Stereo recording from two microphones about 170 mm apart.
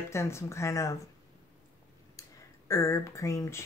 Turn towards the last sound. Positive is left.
turn(degrees=20)  # may be behind; listen again after turning